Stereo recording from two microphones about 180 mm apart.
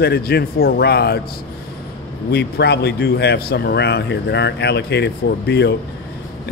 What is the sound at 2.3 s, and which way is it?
A man's voice, 65° left (ahead or behind).